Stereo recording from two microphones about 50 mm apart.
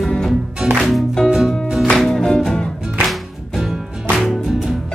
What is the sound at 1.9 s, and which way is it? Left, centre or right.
Music, centre.